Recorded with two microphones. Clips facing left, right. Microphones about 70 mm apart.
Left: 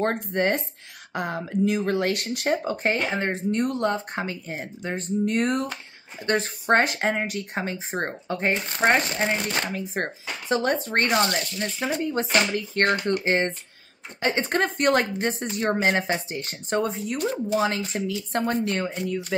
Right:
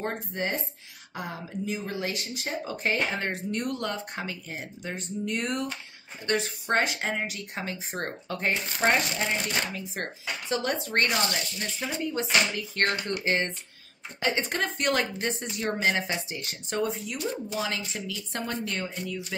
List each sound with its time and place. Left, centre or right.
0.0 s speech: left
3.1 s speech: left
8.7 s speech: left